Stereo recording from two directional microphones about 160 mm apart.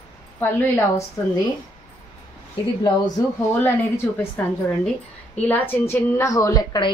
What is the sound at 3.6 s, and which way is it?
Speech, 15° left (ahead or behind).